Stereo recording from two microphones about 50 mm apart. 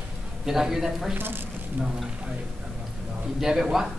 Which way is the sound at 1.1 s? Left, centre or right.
Right.